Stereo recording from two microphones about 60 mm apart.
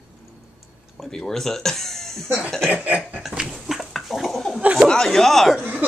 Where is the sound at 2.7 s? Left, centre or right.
Right.